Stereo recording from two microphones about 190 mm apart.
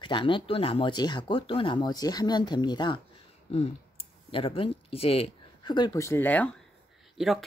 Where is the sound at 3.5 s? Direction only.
35° left (ahead or behind).